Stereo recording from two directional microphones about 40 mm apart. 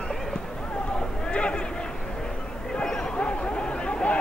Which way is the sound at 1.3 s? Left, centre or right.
Left.